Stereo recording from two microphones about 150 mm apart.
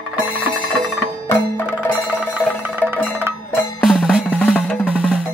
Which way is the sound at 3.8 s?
Centre (ahead or behind).